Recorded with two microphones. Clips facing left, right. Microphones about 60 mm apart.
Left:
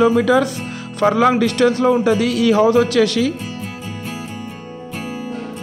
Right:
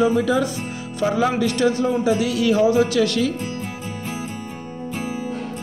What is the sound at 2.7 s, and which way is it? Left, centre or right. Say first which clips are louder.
Speech: left 3 dB; left.